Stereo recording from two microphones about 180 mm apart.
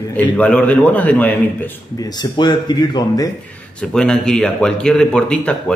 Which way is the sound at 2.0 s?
25° left (ahead or behind).